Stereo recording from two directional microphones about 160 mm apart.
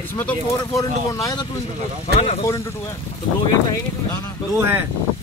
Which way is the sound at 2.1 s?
45° left (ahead or behind).